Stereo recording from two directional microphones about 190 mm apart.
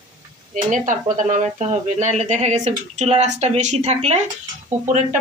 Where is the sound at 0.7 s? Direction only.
40° right (ahead or behind).